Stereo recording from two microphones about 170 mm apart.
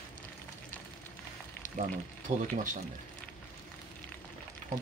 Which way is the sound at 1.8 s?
45° right (ahead or behind).